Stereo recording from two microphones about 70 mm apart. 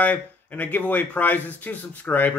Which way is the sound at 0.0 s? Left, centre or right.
Left.